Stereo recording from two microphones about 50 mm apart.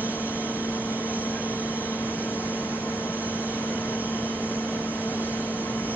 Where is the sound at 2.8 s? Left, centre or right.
Left.